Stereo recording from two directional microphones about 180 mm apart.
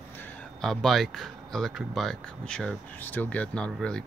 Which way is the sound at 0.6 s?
Centre (ahead or behind).